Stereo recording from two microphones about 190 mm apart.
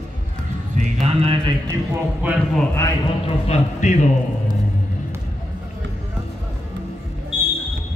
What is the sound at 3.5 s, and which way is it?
Speech, 40° left (ahead or behind).